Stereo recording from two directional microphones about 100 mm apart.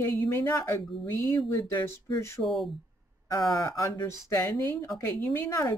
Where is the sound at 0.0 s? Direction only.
25° left (ahead or behind).